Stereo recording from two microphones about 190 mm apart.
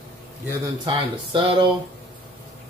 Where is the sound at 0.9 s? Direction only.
25° right (ahead or behind).